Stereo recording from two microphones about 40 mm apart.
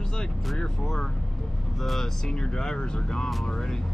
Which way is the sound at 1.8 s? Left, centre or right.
Centre.